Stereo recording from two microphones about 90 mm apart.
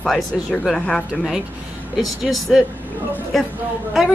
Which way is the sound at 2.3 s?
5° right (ahead or behind).